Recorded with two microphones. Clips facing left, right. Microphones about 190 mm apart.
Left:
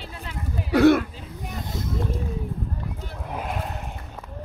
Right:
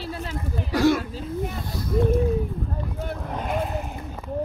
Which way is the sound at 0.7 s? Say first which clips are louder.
Left 4 dB; 60° left (ahead or behind).